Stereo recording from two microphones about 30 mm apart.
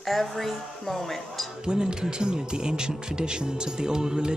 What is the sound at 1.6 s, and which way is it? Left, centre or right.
Speech, right.